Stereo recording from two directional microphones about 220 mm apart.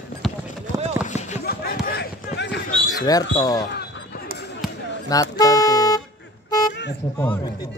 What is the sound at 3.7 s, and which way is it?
Basketball bounce, 50° left (ahead or behind).